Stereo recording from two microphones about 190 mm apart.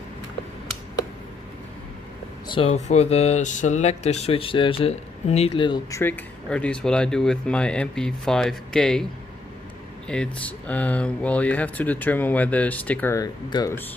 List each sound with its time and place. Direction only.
2.4 s speech: 30° left (ahead or behind); by 9.0 s 5° left (ahead or behind)
10.0 s speech: 5° left (ahead or behind)